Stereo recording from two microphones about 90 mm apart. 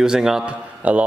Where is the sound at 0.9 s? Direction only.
15° right (ahead or behind).